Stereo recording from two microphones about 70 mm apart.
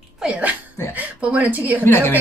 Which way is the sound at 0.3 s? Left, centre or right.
Right.